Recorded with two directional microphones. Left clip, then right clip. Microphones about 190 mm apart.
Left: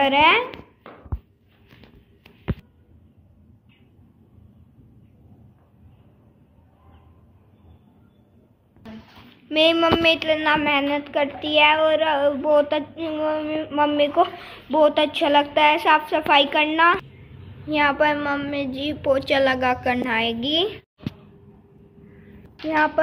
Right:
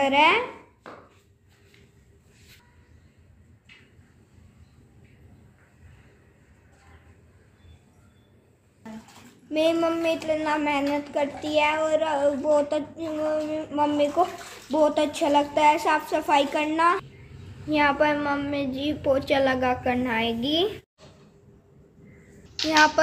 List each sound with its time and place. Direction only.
0.0 s a woman's voice: 5° right (ahead or behind)
9.5 s a woman's voice: 5° right (ahead or behind)
22.7 s a woman's voice: 5° right (ahead or behind)